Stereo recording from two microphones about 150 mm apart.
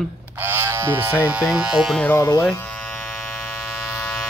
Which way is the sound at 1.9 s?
15° left (ahead or behind).